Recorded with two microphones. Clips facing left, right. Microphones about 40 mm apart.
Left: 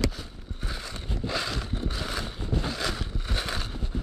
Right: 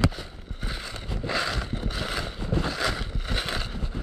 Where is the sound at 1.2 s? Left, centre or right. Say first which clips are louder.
Right 3 dB; centre.